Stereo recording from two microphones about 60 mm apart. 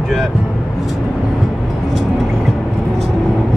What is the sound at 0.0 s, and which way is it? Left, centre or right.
Vehicle, centre.